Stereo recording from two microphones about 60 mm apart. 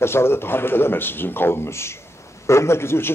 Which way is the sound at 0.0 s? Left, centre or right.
Left.